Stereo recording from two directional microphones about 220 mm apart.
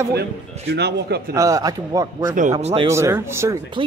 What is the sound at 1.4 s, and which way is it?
Speech, 15° right (ahead or behind).